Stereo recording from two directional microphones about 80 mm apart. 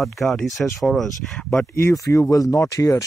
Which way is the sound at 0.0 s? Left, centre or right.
Centre.